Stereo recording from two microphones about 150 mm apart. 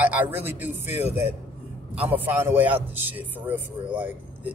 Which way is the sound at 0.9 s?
45° left (ahead or behind).